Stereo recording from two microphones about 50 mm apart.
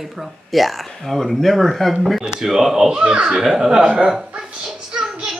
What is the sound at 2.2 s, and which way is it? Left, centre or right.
A child's voice, centre.